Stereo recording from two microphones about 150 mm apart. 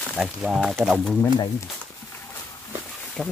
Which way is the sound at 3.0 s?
5° left (ahead or behind).